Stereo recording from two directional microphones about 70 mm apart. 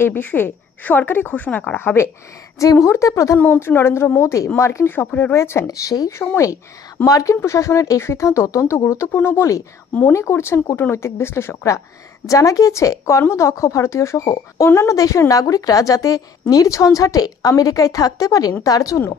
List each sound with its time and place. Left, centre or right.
0.0 s speech: left
2.6 s speech: left
3.5 s speech: left
4.8 s speech: left
5.7 s speech: left
12.3 s a woman's voice: left